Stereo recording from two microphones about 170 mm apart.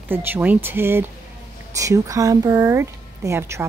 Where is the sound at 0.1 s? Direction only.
10° right (ahead or behind).